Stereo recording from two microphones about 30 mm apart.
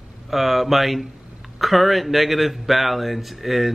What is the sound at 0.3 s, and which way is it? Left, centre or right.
Speech, centre.